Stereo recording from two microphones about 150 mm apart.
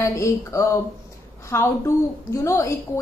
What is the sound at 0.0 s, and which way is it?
A woman's voice, 20° left (ahead or behind).